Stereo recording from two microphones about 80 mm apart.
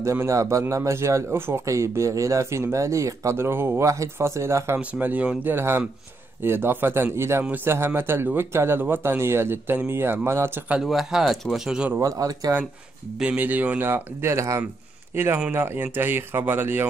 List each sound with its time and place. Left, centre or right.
0.0 s a man's voice: right
4.7 s speech: centre
5.5 s speech: right
10.8 s speech: centre
12.0 s speech: right
13.2 s speech: centre; by 14.6 s right
15.5 s speech: right